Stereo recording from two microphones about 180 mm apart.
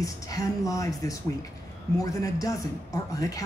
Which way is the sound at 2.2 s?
20° left (ahead or behind).